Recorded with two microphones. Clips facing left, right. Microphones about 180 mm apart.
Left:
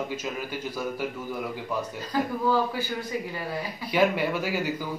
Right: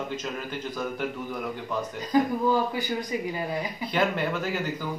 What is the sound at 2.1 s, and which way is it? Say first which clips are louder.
Speech: right 5 dB; 15° right (ahead or behind).